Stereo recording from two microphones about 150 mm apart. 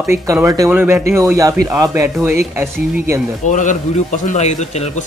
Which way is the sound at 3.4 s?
55° left (ahead or behind).